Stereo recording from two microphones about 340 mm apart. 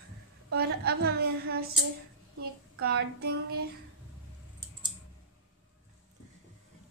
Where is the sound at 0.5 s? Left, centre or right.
Right.